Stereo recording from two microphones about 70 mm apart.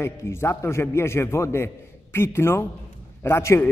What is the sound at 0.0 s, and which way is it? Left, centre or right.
A man's voice, left.